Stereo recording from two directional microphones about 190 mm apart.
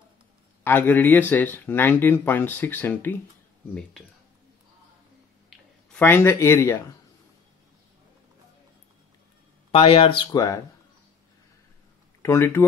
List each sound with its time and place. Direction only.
0.7 s speech: 10° left (ahead or behind)
5.5 s speech: 10° left (ahead or behind)
9.7 s speech: 30° left (ahead or behind)
12.2 s speech: 15° left (ahead or behind)